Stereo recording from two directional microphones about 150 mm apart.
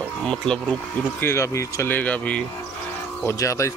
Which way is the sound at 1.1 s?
15° left (ahead or behind).